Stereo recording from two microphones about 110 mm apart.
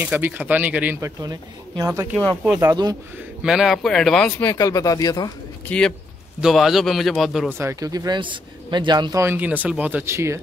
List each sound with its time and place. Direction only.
0.0 s speech: 15° right (ahead or behind)
1.0 s speech: 35° right (ahead or behind)
3.4 s a man's voice: 5° right (ahead or behind)
4.5 s speech: 30° left (ahead or behind)
5.7 s a man's voice: 5° left (ahead or behind)
7.4 s speech: 25° right (ahead or behind)
7.9 s speech: 40° right (ahead or behind)
9.1 s speech: 25° right (ahead or behind)
9.4 s speech: 15° right (ahead or behind)